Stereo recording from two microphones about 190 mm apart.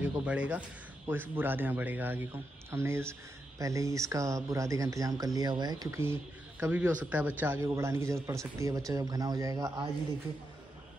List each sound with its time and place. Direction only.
0.0 s speech: 5° right (ahead or behind)